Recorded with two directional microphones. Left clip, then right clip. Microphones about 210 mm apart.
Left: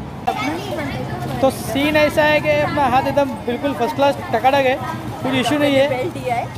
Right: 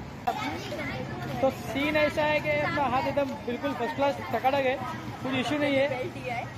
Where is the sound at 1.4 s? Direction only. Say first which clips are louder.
Left 10 dB; 5° left (ahead or behind).